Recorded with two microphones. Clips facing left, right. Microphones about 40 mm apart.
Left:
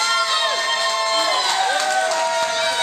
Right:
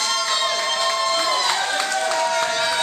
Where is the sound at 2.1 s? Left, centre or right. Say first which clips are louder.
Left 1 dB; centre.